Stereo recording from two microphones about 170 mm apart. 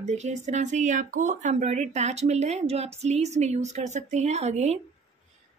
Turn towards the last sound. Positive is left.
turn(degrees=-40)  # may be behind; listen again after turning